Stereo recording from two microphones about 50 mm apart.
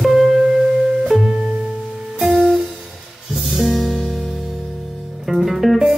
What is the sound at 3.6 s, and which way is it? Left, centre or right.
Music, centre.